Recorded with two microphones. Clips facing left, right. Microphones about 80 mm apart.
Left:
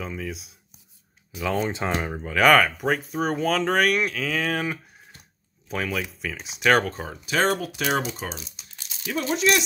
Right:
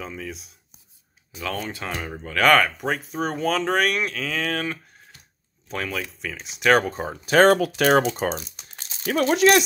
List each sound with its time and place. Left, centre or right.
0.0 s speech: centre
1.3 s speech: right
1.7 s speech: left
2.0 s speech: centre
7.2 s speech: right
7.5 s speech: right
7.8 s speech: right
8.2 s crumpling: right
9.1 s speech: right